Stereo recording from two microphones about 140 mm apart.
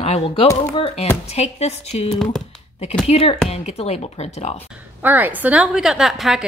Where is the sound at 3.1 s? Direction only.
45° left (ahead or behind).